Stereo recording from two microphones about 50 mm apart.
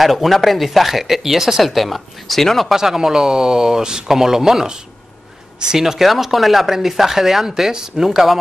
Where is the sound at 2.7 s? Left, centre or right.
Centre.